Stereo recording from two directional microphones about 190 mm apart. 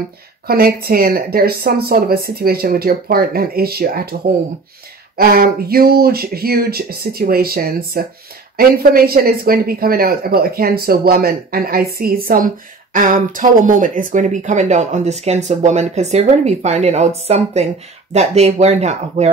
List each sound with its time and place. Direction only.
0.5 s speech: 55° right (ahead or behind); by 19.3 s 35° right (ahead or behind)